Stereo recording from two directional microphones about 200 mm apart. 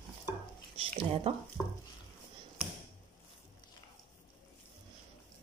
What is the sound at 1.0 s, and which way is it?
Speech, 30° right (ahead or behind).